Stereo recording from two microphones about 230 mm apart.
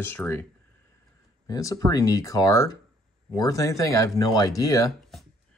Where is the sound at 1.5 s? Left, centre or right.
Centre.